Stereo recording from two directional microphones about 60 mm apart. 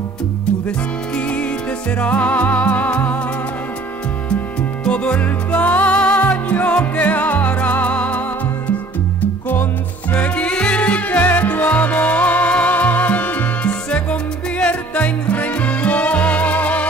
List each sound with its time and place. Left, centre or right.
0.7 s music: centre
4.8 s music: centre
10.1 s music: left